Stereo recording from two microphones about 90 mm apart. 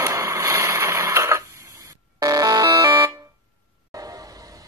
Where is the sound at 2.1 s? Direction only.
45° right (ahead or behind).